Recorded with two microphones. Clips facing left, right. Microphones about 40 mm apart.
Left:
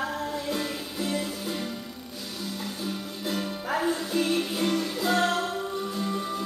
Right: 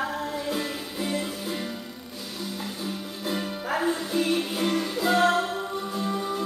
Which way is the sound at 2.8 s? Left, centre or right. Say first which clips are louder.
Even; centre.